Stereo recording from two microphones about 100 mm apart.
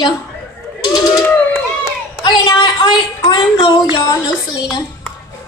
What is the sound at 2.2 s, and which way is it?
A woman's voice, 45° left (ahead or behind).